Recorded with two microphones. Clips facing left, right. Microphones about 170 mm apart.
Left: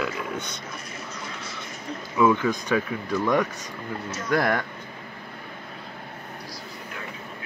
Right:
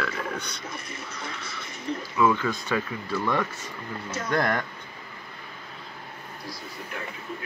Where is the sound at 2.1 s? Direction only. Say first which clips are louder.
Left 3 dB; 15° left (ahead or behind).